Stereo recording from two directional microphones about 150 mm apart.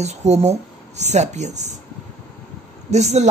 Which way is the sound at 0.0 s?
45° right (ahead or behind).